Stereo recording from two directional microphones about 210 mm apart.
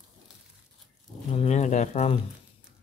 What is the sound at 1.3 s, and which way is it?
Speech, 30° left (ahead or behind).